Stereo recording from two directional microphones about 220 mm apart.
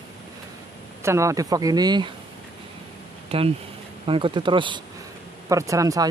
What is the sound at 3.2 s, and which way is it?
Speech, 25° right (ahead or behind).